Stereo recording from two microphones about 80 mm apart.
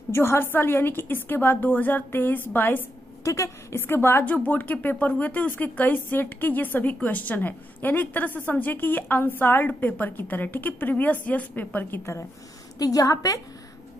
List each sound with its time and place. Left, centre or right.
0.1 s a woman's voice: left
3.3 s a woman's voice: left
12.7 s a woman's voice: left